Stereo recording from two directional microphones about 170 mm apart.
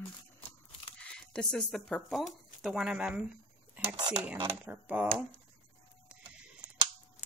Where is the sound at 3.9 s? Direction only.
25° right (ahead or behind).